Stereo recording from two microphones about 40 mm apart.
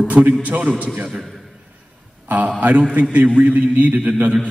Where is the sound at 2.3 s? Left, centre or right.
Right.